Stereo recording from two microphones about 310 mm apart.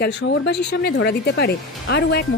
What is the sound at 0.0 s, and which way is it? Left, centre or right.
Speech, left.